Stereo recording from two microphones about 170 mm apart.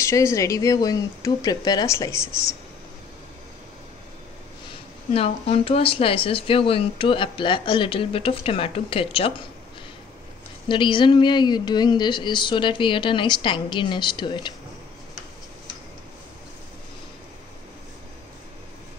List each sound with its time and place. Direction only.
0.0 s speech: 15° left (ahead or behind)
5.1 s speech: 35° left (ahead or behind)
10.7 s speech: 30° left (ahead or behind)